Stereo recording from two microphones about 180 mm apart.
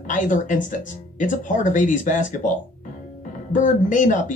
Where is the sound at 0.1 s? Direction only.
45° left (ahead or behind).